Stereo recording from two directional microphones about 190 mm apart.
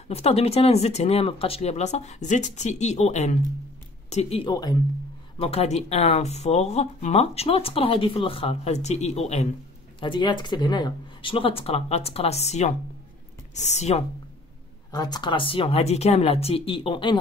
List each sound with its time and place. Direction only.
0.1 s speech: 30° left (ahead or behind)
14.9 s speech: 20° left (ahead or behind)